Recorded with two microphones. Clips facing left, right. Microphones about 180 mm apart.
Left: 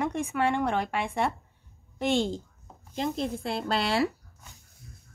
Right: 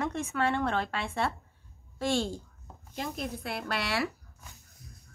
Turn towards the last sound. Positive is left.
turn(degrees=25)  # may be behind; listen again after turning